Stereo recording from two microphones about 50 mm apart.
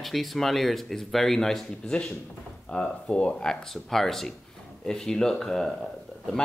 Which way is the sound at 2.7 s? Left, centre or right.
Left.